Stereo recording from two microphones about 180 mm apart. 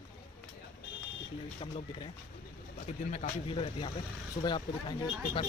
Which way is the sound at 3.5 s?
30° left (ahead or behind).